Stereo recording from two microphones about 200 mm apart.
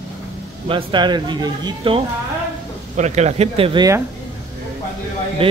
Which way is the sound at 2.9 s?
35° right (ahead or behind).